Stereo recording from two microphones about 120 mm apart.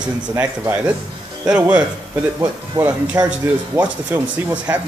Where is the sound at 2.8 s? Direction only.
10° right (ahead or behind).